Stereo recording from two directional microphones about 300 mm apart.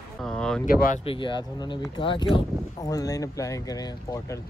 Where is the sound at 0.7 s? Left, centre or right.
Left.